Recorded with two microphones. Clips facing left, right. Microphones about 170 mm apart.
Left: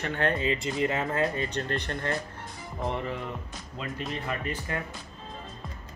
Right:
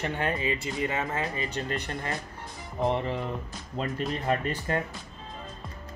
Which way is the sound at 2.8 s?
25° right (ahead or behind).